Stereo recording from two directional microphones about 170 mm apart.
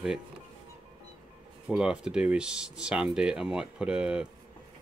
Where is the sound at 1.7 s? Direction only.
5° right (ahead or behind).